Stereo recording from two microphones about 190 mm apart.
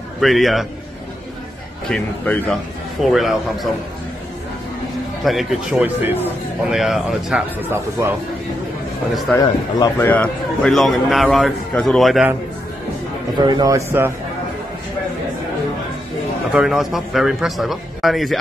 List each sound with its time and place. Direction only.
0.2 s a man's voice: centre (ahead or behind)
1.9 s a man's voice: 10° left (ahead or behind)
5.2 s a man's voice: centre (ahead or behind)
9.1 s a man's voice: centre (ahead or behind)
9.4 s a man's voice: 20° left (ahead or behind)
9.9 s a man's voice: 10° left (ahead or behind)
13.4 s a man's voice: 20° right (ahead or behind)
16.5 s a man's voice: centre (ahead or behind)